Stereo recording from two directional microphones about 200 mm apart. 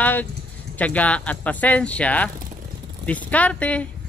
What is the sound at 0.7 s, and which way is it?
Speech, 5° left (ahead or behind).